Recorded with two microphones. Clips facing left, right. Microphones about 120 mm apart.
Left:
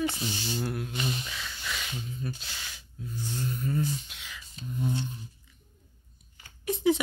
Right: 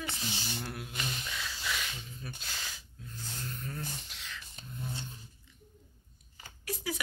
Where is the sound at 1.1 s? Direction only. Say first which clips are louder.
Left 2 dB; 5° left (ahead or behind).